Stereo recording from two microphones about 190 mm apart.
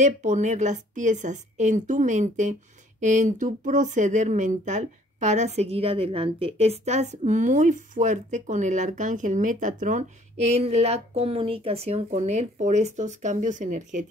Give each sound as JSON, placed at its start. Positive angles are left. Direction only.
{"t": 0.0, "sound": "speech", "side_deg": -40}